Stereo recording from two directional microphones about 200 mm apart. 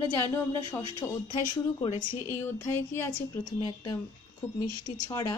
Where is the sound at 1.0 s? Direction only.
15° left (ahead or behind).